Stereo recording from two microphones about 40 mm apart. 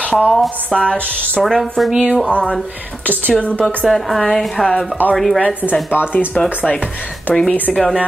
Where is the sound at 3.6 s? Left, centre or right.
Centre.